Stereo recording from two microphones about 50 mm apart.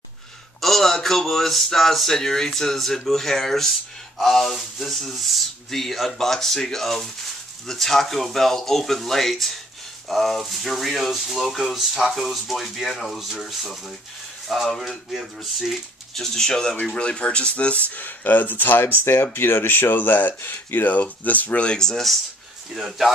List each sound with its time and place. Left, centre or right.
0.6 s speech: centre
16.2 s speech: centre; by 21.6 s left
21.6 s speech: centre
22.8 s speech: centre